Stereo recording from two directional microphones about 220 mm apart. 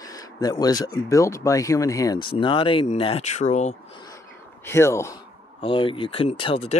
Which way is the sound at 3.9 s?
15° left (ahead or behind).